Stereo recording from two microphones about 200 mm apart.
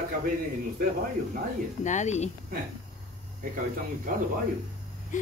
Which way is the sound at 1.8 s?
35° left (ahead or behind).